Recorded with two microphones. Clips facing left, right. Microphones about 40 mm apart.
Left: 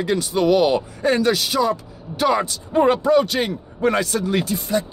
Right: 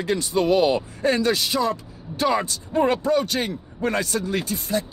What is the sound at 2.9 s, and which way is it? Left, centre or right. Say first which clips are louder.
Speech: left 5 dB; left.